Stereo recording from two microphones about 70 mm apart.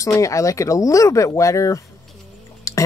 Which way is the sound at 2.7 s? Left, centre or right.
Left.